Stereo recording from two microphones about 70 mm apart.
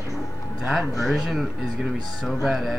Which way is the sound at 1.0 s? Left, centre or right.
Centre.